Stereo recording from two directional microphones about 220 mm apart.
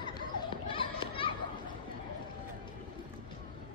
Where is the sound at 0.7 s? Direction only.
25° left (ahead or behind).